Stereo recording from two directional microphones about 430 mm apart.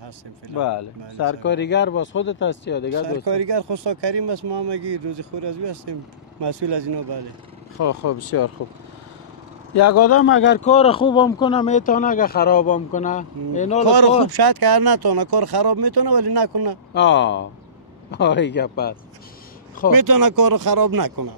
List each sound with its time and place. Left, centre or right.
0.6 s speech: left
1.4 s speech: left
3.3 s speech: right
7.8 s speech: left
9.8 s speech: left; by 13.8 s centre
13.8 s speech: right
16.9 s speech: left
19.9 s speech: right